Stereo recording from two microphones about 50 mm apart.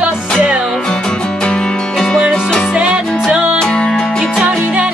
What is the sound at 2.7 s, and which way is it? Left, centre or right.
Music, centre.